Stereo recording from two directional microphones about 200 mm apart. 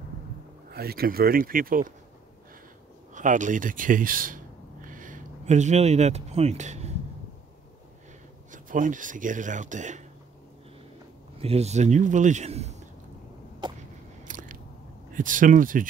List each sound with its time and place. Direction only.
0.7 s speech: 50° right (ahead or behind)
3.2 s a man's voice: 40° right (ahead or behind)
4.8 s a sound: 40° right (ahead or behind)
8.5 s speech: 40° right (ahead or behind)
11.3 s a man's voice: 30° right (ahead or behind)
13.6 s a sound: 20° right (ahead or behind)
14.2 s biting: 40° right (ahead or behind)
15.1 s a man's voice: 40° right (ahead or behind)